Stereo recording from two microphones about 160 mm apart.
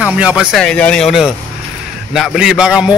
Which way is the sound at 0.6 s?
5° left (ahead or behind).